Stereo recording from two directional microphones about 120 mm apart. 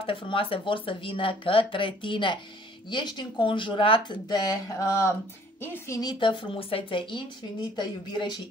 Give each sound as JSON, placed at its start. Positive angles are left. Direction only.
{"t": 0.0, "sound": "speech", "side_deg": 45}
{"t": 4.3, "sound": "mantra", "side_deg": 35}
{"t": 5.9, "sound": "speech", "side_deg": 40}